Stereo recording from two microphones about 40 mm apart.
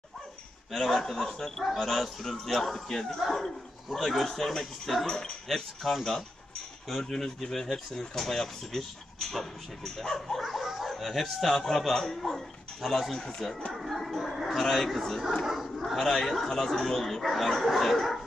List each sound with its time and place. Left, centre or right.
0.7 s speech: centre
1.1 s a man's voice: centre
5.0 s a man's voice: centre
5.8 s a man's voice: centre
10.4 s chuckle: centre
10.9 s speech: centre
15.4 s speech: centre
15.8 s speech: centre